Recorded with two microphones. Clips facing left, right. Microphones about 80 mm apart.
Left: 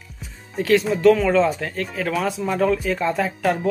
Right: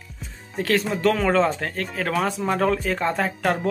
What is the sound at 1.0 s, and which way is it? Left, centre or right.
Speech, right.